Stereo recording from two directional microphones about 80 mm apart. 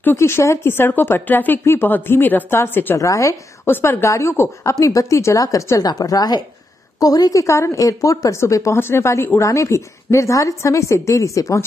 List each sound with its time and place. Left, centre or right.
0.0 s speech: left
3.0 s a woman's voice: left
3.6 s a woman's voice: left
5.9 s a woman's voice: left